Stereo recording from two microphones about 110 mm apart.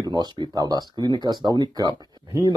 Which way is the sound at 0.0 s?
40° right (ahead or behind).